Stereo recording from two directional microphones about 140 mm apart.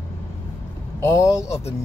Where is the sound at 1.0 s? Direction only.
20° left (ahead or behind).